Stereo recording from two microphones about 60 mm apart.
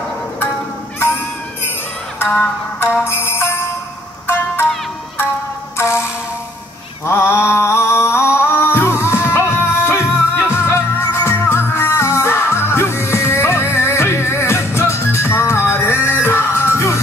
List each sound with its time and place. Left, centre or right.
3.0 s music: left
5.8 s music: left
7.1 s music: left